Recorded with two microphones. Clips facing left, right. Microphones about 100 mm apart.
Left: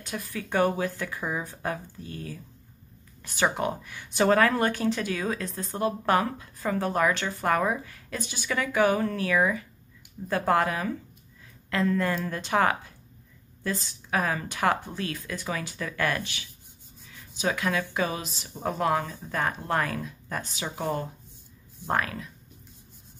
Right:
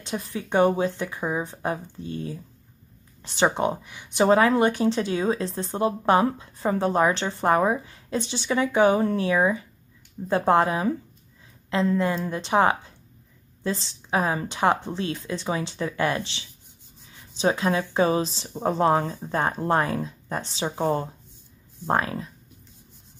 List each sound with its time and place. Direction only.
0.0 s speech: 25° right (ahead or behind)
21.8 s speech: 25° right (ahead or behind)